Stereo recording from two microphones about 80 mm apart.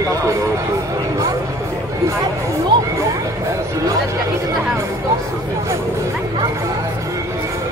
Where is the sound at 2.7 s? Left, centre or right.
Right.